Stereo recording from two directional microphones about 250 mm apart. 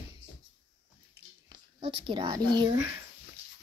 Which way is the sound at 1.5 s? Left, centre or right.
Right.